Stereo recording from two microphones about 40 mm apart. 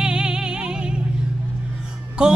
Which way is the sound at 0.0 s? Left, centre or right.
Right.